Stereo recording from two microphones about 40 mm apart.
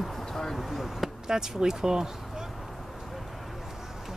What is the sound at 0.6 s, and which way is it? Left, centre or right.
Speech, centre.